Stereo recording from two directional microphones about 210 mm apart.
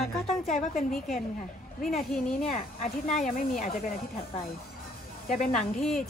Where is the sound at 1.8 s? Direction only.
Centre (ahead or behind).